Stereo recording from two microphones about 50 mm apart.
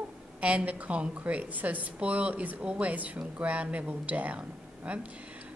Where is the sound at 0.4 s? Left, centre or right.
Right.